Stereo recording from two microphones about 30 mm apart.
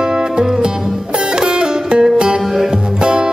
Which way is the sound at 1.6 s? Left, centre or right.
Right.